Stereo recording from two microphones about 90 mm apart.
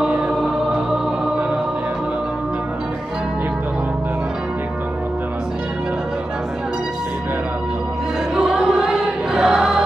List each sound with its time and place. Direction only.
0.0 s choir: 10° right (ahead or behind)
8.4 s music: 5° right (ahead or behind)